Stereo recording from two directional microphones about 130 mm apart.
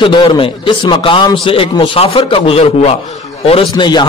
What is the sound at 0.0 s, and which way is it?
A man's voice, 40° left (ahead or behind).